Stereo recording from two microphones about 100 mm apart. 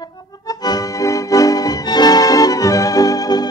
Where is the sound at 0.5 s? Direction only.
40° left (ahead or behind).